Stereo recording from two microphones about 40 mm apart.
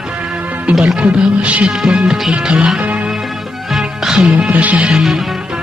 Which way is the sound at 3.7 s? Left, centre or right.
Centre.